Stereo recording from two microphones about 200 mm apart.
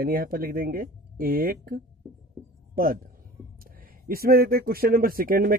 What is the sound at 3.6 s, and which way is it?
Speech, 45° right (ahead or behind).